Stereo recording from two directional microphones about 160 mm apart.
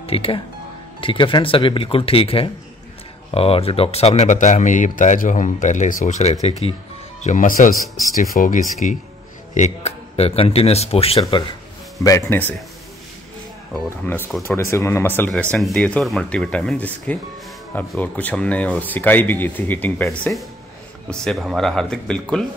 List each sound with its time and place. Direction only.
0.0 s speech: 35° left (ahead or behind)
7.2 s speech: 50° left (ahead or behind)
12.0 s speech: 20° left (ahead or behind)
13.8 s speech: 15° left (ahead or behind)